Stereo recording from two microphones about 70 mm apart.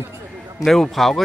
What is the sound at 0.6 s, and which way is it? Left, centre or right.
Speech, centre.